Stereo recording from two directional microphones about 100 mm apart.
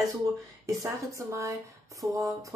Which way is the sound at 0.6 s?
30° right (ahead or behind).